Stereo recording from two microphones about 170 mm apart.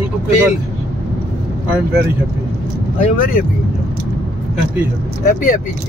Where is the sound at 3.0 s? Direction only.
55° left (ahead or behind).